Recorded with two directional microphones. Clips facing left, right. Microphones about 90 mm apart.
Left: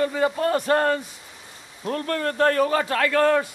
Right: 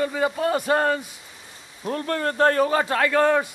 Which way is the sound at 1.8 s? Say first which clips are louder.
Even; 20° right (ahead or behind).